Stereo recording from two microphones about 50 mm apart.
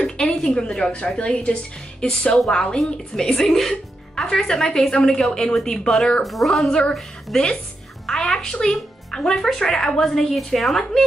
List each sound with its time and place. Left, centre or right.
0.0 s a woman's voice: centre
6.2 s a woman's voice: centre